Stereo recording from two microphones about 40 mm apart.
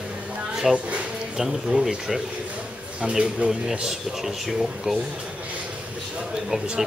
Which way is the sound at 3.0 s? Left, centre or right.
Right.